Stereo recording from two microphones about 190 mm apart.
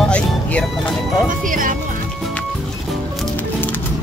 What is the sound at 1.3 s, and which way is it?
Music, 45° right (ahead or behind).